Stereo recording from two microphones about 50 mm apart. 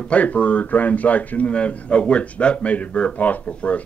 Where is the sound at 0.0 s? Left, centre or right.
Left.